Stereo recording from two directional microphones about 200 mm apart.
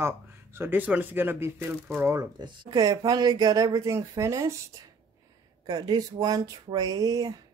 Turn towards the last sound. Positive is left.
turn(degrees=-20)  # may be behind; listen again after turning